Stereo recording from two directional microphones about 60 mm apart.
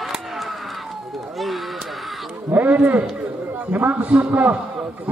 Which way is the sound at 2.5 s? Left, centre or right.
Right.